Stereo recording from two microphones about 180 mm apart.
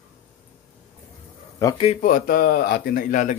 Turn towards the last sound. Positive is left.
turn(degrees=50)  # may be behind; listen again after turning